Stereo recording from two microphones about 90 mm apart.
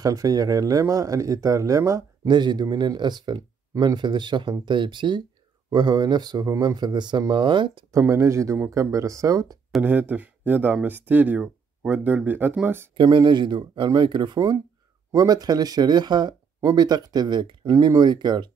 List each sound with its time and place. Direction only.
0.0 s speech: 40° right (ahead or behind)
2.2 s speech: 55° right (ahead or behind)
8.0 s speech: 30° right (ahead or behind)
9.8 s speech: 20° right (ahead or behind)
12.9 s speech: 55° right (ahead or behind)
15.0 s speech: 45° right (ahead or behind)